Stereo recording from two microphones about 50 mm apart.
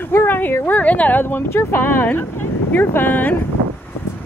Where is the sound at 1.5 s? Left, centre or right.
Left.